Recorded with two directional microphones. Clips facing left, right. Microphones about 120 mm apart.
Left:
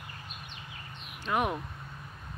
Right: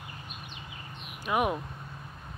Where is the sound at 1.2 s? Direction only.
10° right (ahead or behind).